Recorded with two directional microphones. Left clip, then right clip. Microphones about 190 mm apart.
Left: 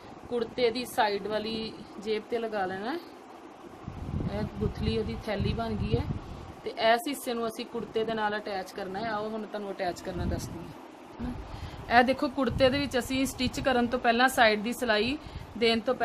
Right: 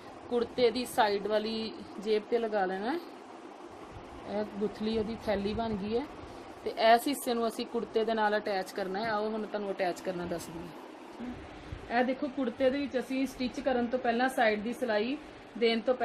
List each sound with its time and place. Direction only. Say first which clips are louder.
0.3 s speech: even; centre (ahead or behind)
4.3 s speech: right 2 dB; centre (ahead or behind)
9.8 s speech: left 1 dB; centre (ahead or behind)
11.9 s speech: left 7 dB; 50° left (ahead or behind)